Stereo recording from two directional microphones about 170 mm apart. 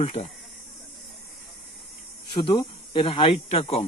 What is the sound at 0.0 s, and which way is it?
Speech, 40° left (ahead or behind).